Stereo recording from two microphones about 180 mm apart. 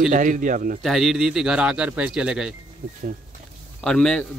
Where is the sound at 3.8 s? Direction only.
5° left (ahead or behind).